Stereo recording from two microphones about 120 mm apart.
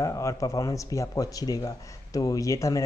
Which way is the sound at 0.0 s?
25° left (ahead or behind).